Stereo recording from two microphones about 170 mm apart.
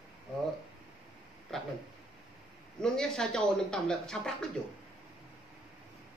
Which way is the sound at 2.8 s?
5° left (ahead or behind).